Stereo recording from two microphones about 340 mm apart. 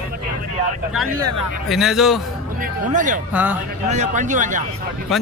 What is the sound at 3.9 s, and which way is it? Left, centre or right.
Speech, right.